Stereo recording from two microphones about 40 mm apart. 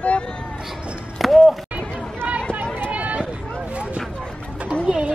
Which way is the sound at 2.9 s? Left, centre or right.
Right.